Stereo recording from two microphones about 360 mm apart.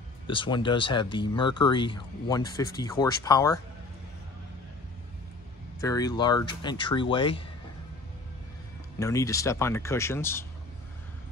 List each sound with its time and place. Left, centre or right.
0.3 s speech: centre
5.8 s speech: centre
9.0 s speech: centre